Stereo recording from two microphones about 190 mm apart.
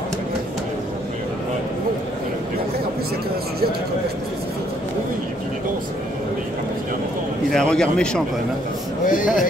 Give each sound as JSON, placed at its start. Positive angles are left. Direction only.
{"t": 7.5, "sound": "a man's voice", "side_deg": 5}
{"t": 9.0, "sound": "speech", "side_deg": 45}